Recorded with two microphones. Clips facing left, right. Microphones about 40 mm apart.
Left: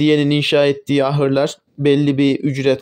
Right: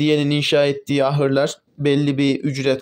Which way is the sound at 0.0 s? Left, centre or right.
Centre.